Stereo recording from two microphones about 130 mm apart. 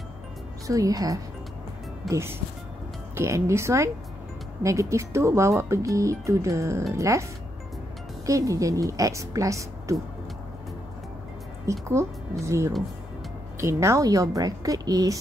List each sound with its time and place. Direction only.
0.7 s speech: 25° right (ahead or behind)
8.3 s speech: 25° right (ahead or behind)
11.6 s speech: 20° right (ahead or behind)